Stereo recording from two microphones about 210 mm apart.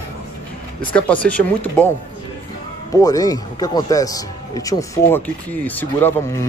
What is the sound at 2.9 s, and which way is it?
Speech, 15° left (ahead or behind).